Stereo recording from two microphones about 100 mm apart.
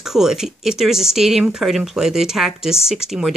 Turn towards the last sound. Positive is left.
turn(degrees=-5)  # may be behind; listen again after turning